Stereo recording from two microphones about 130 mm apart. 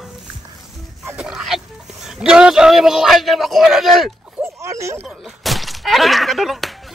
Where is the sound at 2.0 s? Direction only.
5° right (ahead or behind).